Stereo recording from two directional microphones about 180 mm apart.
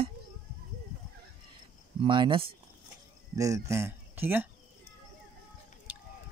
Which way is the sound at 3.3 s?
15° right (ahead or behind).